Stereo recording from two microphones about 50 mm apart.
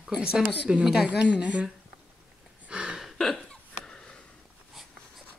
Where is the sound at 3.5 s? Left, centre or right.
Centre.